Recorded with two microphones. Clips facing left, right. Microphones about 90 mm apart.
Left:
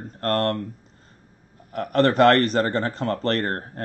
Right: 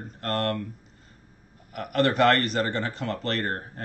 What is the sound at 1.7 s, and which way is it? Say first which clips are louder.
Speech: left 4 dB; 35° left (ahead or behind).